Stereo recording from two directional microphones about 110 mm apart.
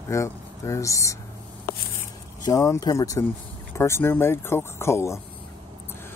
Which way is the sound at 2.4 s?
30° left (ahead or behind).